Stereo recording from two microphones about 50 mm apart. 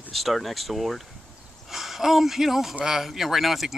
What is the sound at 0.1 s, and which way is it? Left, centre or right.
Speech, centre.